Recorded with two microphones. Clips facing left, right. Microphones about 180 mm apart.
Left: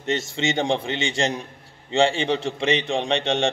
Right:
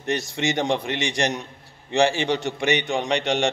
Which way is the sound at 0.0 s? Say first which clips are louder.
Even; 25° left (ahead or behind).